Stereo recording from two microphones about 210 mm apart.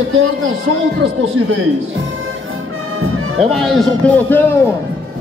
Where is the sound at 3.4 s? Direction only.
Centre (ahead or behind).